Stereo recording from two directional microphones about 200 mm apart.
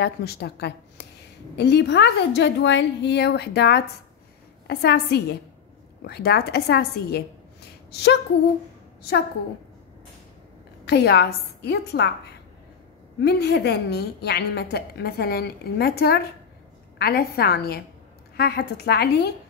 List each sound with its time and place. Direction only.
0.0 s a woman's voice: 55° left (ahead or behind)
7.9 s a sound: 55° left (ahead or behind)
10.9 s a woman's voice: 55° left (ahead or behind)
13.2 s a woman's voice: 55° left (ahead or behind)